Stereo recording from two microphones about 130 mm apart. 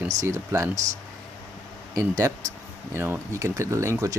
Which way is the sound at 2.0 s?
25° right (ahead or behind).